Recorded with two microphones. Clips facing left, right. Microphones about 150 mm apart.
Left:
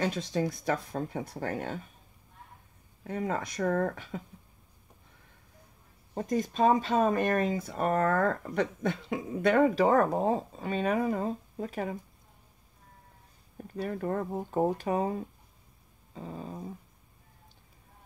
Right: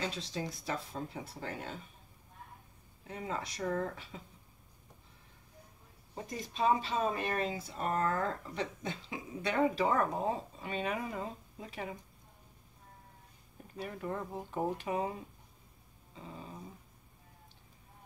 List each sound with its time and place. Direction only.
0.0 s speech: 50° left (ahead or behind)
3.0 s speech: 50° left (ahead or behind)
6.1 s speech: 50° left (ahead or behind)
9.8 s speech: 40° left (ahead or behind)
13.7 s speech: 45° left (ahead or behind)